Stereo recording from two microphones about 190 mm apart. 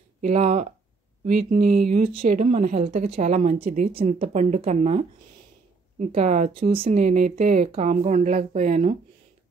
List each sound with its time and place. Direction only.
0.2 s speech: 35° right (ahead or behind)